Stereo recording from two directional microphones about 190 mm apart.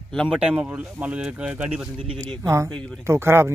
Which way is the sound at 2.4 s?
15° right (ahead or behind).